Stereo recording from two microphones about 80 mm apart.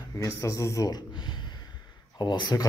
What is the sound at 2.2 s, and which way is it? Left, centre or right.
Speech, left.